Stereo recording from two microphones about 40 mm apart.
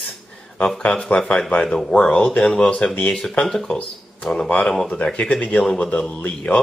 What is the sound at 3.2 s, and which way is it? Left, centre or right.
Speech, centre.